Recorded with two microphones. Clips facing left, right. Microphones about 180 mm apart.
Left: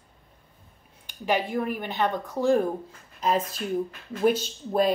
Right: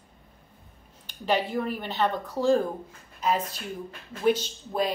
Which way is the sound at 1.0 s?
10° left (ahead or behind).